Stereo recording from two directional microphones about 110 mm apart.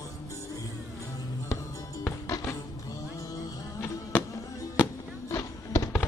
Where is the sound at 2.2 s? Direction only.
30° left (ahead or behind).